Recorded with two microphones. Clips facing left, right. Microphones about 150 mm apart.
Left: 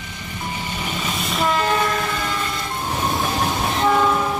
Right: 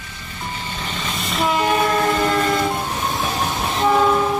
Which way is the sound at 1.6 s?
20° right (ahead or behind).